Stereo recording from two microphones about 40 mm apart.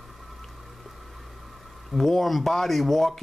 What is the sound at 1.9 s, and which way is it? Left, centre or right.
Speech, centre.